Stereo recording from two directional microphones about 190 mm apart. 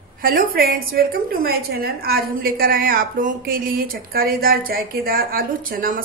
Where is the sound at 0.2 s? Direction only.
50° right (ahead or behind).